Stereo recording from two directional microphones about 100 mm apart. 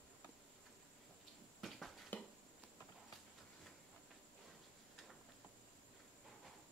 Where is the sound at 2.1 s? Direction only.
15° left (ahead or behind).